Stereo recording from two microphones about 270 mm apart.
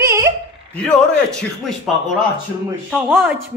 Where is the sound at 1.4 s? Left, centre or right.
Centre.